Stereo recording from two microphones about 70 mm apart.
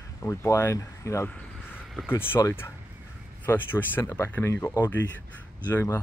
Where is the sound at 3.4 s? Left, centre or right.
Left.